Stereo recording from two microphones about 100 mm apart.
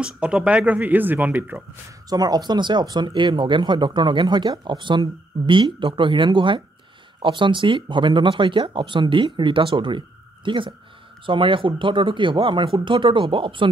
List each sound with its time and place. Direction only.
0.0 s speech: 10° right (ahead or behind)
2.0 s speech: 40° right (ahead or behind); by 13.7 s 60° right (ahead or behind)